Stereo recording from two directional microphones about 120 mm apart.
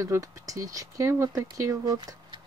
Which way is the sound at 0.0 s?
25° right (ahead or behind).